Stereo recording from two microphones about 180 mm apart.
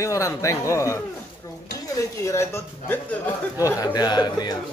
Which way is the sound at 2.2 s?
15° left (ahead or behind).